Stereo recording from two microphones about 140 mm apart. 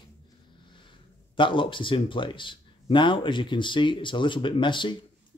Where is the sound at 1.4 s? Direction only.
35° left (ahead or behind).